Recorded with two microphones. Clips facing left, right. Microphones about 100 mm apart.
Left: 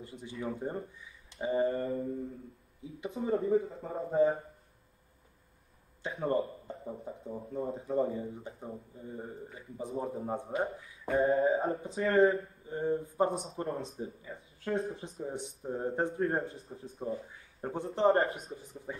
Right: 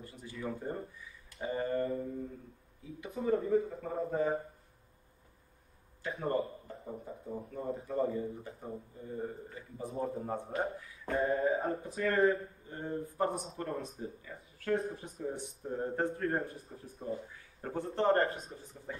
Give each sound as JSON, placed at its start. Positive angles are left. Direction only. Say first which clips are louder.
{"t": 0.0, "sound": "speech", "louder": "left 2 dB", "side_deg": 20}
{"t": 3.0, "sound": "speech", "louder": "even", "side_deg": 25}
{"t": 6.0, "sound": "a man's voice", "louder": "left 2 dB", "side_deg": 25}
{"t": 11.1, "sound": "speech", "louder": "left 4 dB", "side_deg": 25}
{"t": 12.6, "sound": "a man's voice", "louder": "left 8 dB", "side_deg": 15}